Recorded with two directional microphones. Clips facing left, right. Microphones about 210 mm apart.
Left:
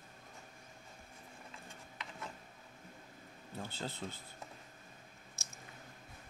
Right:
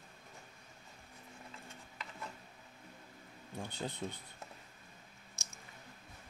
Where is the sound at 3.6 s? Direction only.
15° right (ahead or behind).